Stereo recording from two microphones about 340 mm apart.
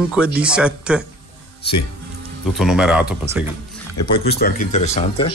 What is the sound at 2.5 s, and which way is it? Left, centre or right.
Speech, centre.